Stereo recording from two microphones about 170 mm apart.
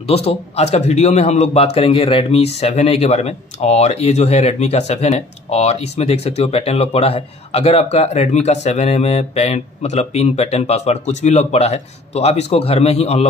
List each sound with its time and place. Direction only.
0.0 s a man's voice: 35° left (ahead or behind)